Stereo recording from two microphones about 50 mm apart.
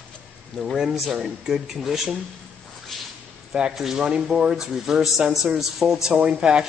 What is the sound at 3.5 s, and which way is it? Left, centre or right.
Speech, centre.